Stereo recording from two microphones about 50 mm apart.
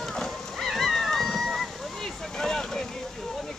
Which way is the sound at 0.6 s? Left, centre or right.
Centre.